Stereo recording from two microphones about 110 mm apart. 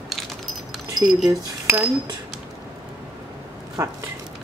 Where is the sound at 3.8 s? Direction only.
30° right (ahead or behind).